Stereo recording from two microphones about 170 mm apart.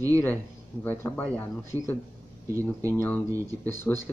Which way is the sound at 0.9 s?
10° left (ahead or behind).